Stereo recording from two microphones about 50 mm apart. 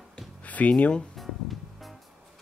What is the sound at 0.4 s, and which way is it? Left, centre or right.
Speech, left.